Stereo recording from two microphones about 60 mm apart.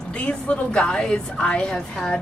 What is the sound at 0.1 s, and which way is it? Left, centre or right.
A woman's voice, left.